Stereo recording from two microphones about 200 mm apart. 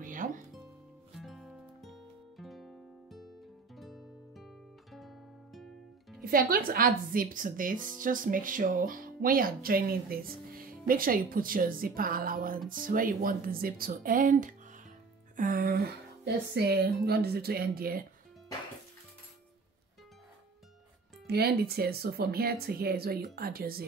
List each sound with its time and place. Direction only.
0.0 s music: 40° right (ahead or behind)
1.1 s music: centre (ahead or behind)
6.2 s speech: 45° right (ahead or behind)
21.3 s speech: 55° right (ahead or behind)